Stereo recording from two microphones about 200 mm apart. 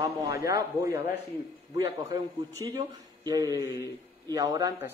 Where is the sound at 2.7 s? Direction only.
20° right (ahead or behind).